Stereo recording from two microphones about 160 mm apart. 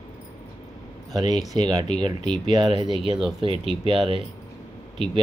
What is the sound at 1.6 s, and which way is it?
Speech, 25° right (ahead or behind).